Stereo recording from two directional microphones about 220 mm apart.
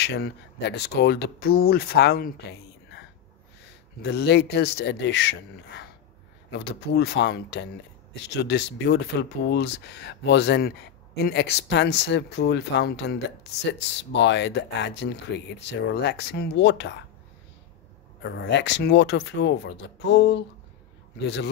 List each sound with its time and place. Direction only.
0.0 s speech: 50° left (ahead or behind)
4.0 s speech: 50° left (ahead or behind)
18.2 s speech: 55° left (ahead or behind)